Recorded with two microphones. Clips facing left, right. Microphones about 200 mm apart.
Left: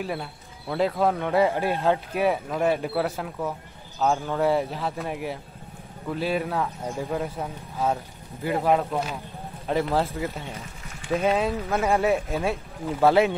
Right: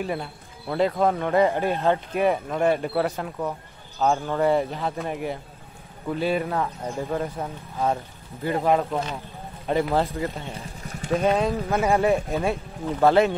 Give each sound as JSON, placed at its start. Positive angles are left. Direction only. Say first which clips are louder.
{"t": 0.0, "sound": "speech", "louder": "right 2 dB", "side_deg": 0}
{"t": 10.5, "sound": "vehicle", "louder": "right 3 dB", "side_deg": -35}
{"t": 11.1, "sound": "speech", "louder": "right 1 dB", "side_deg": 0}